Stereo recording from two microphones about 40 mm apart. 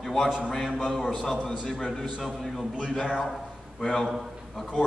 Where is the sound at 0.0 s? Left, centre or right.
Centre.